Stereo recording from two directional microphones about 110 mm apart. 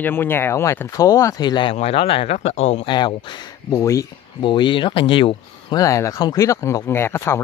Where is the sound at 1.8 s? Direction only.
65° left (ahead or behind).